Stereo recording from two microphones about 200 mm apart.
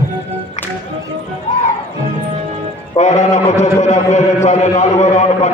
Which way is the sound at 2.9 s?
35° left (ahead or behind).